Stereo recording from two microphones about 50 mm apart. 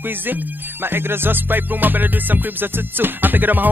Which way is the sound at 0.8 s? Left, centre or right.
Right.